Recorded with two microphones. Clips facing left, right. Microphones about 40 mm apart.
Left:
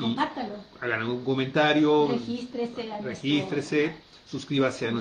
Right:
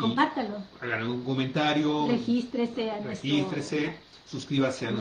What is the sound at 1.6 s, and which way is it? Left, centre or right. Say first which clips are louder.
Speech: left 6 dB; left.